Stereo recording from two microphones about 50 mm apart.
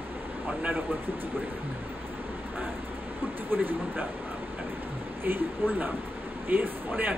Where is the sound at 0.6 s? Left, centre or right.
Right.